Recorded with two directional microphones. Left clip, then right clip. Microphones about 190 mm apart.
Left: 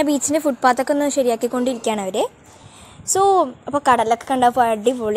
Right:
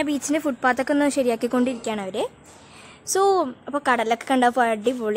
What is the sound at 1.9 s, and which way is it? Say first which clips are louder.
Speech: left 6 dB; 15° left (ahead or behind).